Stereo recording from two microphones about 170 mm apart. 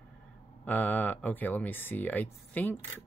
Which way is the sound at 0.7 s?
10° left (ahead or behind).